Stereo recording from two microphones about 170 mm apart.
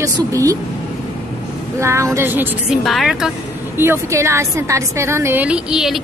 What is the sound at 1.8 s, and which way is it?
A woman's voice, 15° right (ahead or behind).